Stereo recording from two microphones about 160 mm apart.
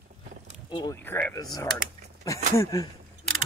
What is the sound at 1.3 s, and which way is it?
Speech, 20° left (ahead or behind).